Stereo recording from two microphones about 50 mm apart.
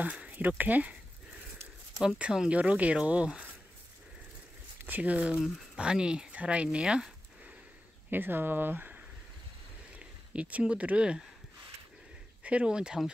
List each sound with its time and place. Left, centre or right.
0.0 s speech: right
2.5 s speech: right
4.8 s speech: right; by 6.3 s centre
6.3 s a sound: right
8.1 s speech: right
9.9 s speech: right
12.4 s speech: right